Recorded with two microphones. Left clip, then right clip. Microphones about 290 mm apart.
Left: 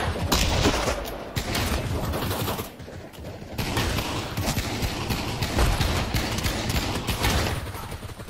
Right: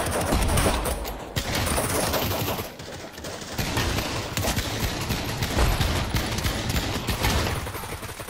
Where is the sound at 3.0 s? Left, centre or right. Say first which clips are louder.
Right 4 dB; right.